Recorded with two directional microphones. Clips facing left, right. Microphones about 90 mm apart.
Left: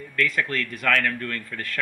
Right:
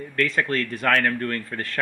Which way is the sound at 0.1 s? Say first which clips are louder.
Right 2 dB; 35° right (ahead or behind).